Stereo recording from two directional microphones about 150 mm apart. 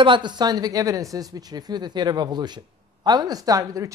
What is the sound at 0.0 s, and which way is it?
Speech, 30° right (ahead or behind).